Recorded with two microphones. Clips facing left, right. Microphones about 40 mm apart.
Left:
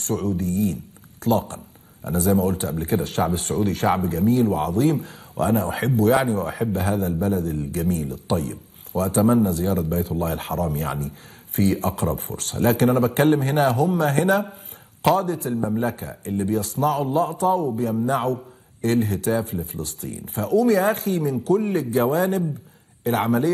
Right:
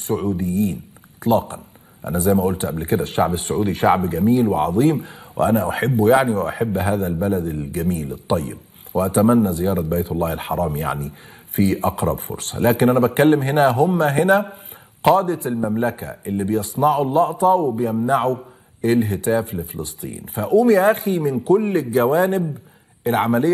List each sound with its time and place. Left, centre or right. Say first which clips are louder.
0.0 s a man's voice: right 3 dB; centre
6.3 s a man's voice: right 3 dB; centre
6.6 s a man's voice: right 3 dB; centre
7.8 s a man's voice: right 1 dB; centre
8.5 s a man's voice: even; centre